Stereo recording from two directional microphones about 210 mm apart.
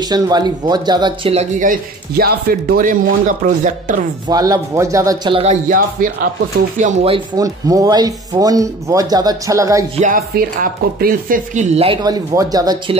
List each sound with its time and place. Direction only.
0.1 s speech: 20° right (ahead or behind); by 4.0 s 40° right (ahead or behind)
4.3 s speech: 15° right (ahead or behind); by 7.2 s 35° right (ahead or behind)
7.3 s speech: 15° right (ahead or behind)
9.9 s speech: 40° right (ahead or behind); by 12.9 s 20° right (ahead or behind)